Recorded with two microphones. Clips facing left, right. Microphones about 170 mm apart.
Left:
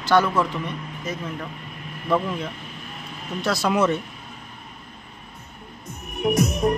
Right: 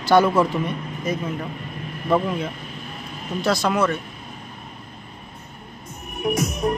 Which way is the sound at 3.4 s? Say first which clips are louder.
Right 2 dB; 5° left (ahead or behind).